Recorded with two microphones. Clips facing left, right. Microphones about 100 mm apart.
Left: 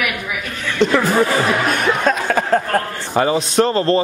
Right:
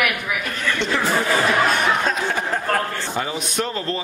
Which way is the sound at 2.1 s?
55° left (ahead or behind).